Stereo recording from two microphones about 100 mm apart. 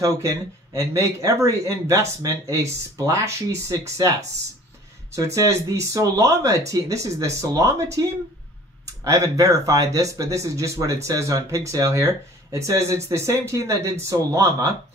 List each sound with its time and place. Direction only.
0.0 s speech: 30° right (ahead or behind)